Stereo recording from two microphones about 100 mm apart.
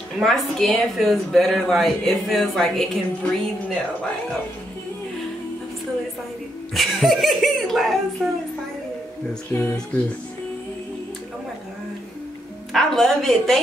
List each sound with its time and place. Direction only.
0.2 s speech: 5° left (ahead or behind)
6.7 s speech: centre (ahead or behind)
9.5 s speech: 30° left (ahead or behind)
12.7 s speech: 5° left (ahead or behind)